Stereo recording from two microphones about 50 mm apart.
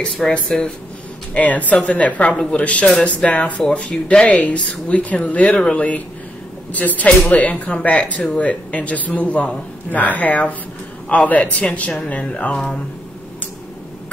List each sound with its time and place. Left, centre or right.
0.0 s speech: centre
1.3 s speech: left
5.5 s speech: centre
5.8 s speech: left